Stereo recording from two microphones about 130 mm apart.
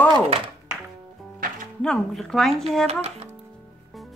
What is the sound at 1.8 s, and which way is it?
Speech, 5° left (ahead or behind).